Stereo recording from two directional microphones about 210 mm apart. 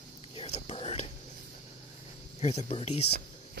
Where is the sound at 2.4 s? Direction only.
30° left (ahead or behind).